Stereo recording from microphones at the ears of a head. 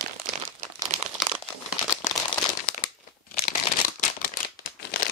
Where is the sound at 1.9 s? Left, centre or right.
Left.